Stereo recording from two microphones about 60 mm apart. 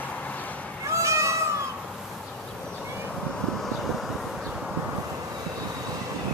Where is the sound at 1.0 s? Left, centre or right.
Right.